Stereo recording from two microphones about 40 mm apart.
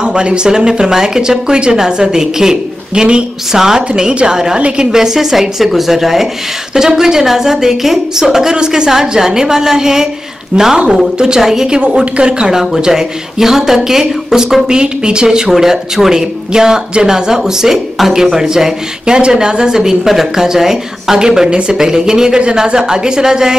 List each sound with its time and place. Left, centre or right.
0.0 s a woman's voice: right
3.5 s speech: centre
4.6 s a woman's voice: right
4.9 s a woman's voice: centre
12.5 s speech: centre